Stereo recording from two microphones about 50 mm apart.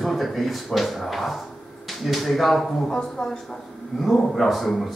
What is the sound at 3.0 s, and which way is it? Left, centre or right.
Speech, centre.